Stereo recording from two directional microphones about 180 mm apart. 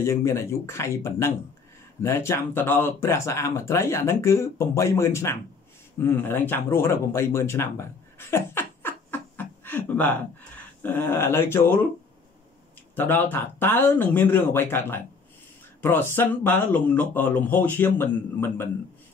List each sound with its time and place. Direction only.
0.0 s speech: 15° left (ahead or behind)
12.9 s speech: 10° left (ahead or behind)